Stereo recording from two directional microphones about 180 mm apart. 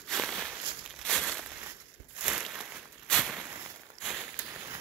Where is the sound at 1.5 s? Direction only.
10° right (ahead or behind).